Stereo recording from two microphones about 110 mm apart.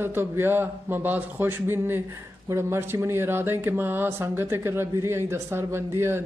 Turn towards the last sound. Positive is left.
turn(degrees=-20)  # may be behind; listen again after turning